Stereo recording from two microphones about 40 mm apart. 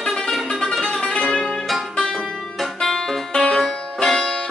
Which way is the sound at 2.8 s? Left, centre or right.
Centre.